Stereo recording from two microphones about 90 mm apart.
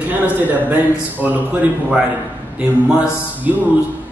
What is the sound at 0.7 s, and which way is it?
A man's voice, 20° right (ahead or behind).